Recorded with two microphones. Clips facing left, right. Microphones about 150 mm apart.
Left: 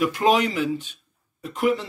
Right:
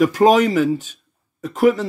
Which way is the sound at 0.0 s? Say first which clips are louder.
Right 7 dB; 45° right (ahead or behind).